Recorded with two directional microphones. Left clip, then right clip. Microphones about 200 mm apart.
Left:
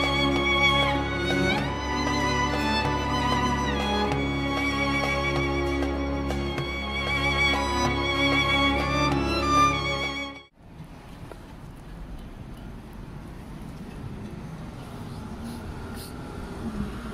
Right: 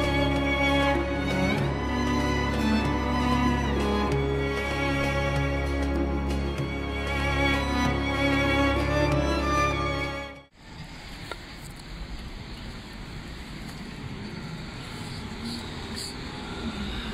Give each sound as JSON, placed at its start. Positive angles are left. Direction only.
{"t": 0.0, "sound": "music", "side_deg": 0}